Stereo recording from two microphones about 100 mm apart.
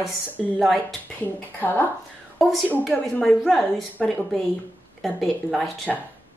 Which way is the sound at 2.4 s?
Centre (ahead or behind).